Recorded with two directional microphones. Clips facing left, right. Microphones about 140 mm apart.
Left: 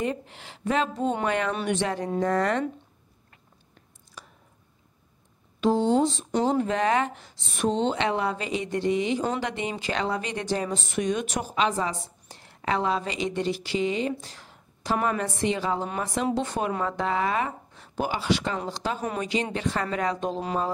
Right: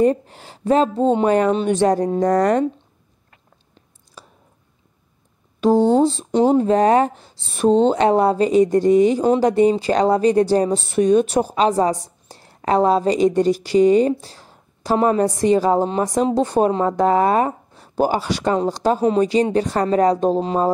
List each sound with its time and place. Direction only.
0.0 s speech: 40° right (ahead or behind)
3.7 s a sound: 30° right (ahead or behind)
5.6 s speech: 40° right (ahead or behind)
14.1 s a woman's voice: 35° right (ahead or behind)